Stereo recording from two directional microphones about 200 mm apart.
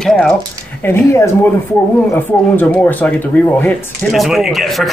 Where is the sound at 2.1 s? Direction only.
10° left (ahead or behind).